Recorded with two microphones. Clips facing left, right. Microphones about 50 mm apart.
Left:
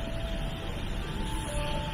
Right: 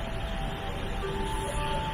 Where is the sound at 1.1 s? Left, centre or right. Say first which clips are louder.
Right 6 dB; right.